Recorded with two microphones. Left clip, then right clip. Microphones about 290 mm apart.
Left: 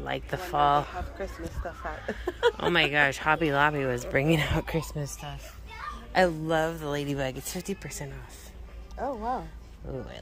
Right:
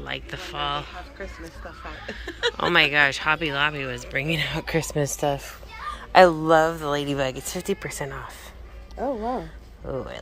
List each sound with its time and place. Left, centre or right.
0.0 s speech: centre; by 2.5 s left
2.5 s speech: centre
4.9 s speech: centre
5.9 s speech: centre
9.0 s speech: right
9.8 s speech: centre